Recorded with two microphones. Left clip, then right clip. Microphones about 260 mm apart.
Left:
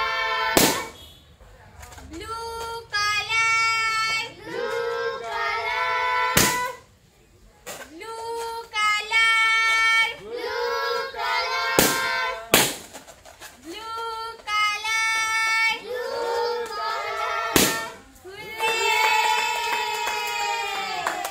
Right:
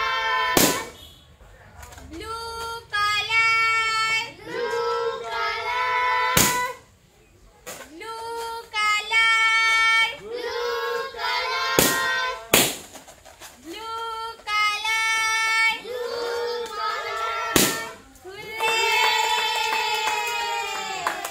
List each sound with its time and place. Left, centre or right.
0.0 s a sound: centre
2.1 s child singing: centre
10.9 s music: centre
13.4 s child singing: centre
16.4 s music: centre